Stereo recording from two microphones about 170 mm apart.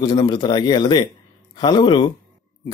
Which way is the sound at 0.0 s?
25° left (ahead or behind).